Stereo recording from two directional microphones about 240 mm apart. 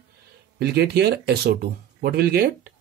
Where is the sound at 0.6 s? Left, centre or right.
Right.